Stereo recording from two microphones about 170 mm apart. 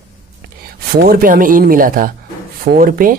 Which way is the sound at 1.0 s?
55° right (ahead or behind).